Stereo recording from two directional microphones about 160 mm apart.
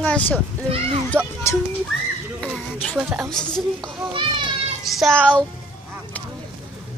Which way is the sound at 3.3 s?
5° left (ahead or behind).